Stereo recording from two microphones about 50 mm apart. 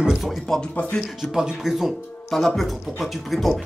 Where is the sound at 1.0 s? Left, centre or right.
Centre.